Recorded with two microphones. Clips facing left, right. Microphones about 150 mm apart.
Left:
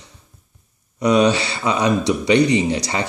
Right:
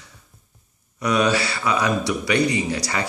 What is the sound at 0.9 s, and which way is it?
Speech, 20° left (ahead or behind).